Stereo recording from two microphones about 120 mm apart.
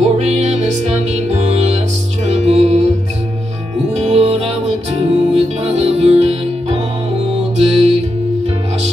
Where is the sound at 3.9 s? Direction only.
60° right (ahead or behind).